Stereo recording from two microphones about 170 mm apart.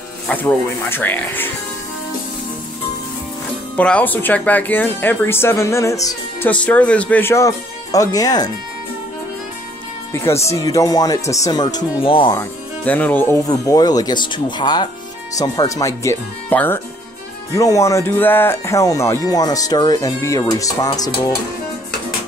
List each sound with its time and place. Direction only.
0.3 s speech: 10° left (ahead or behind)
3.7 s speech: 10° left (ahead or behind)
6.5 s speech: 5° left (ahead or behind)
10.1 s speech: 15° left (ahead or behind); by 12.4 s 30° left (ahead or behind)
12.4 s speech: 10° left (ahead or behind)